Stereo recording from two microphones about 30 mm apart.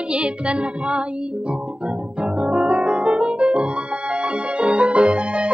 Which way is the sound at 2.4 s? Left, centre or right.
Right.